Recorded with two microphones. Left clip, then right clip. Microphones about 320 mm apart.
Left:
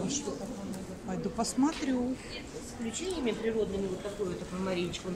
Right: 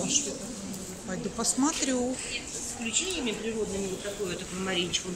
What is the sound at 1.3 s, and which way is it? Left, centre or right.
Speech, centre.